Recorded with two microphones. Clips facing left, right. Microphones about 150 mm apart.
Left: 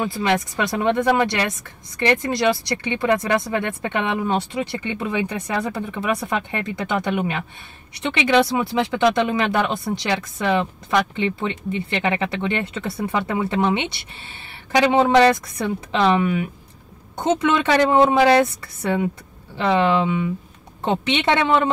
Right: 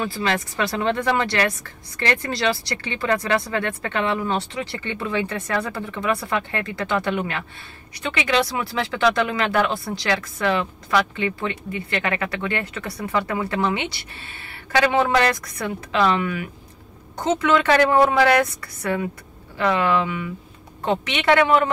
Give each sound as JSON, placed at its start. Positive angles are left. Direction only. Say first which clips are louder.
{"t": 0.0, "sound": "speech", "louder": "left 3 dB", "side_deg": 20}